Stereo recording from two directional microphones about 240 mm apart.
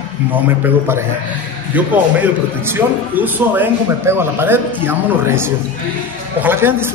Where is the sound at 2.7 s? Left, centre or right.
Centre.